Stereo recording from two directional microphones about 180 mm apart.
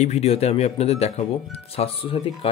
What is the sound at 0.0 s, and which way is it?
Speech, 35° left (ahead or behind).